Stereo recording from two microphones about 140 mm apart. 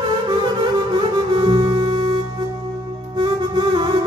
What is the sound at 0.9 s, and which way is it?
Music, 35° right (ahead or behind).